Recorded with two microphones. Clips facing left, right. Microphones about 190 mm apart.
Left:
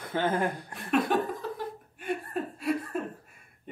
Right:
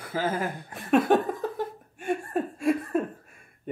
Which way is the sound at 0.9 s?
50° right (ahead or behind).